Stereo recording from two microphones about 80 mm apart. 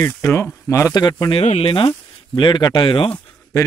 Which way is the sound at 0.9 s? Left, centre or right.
Left.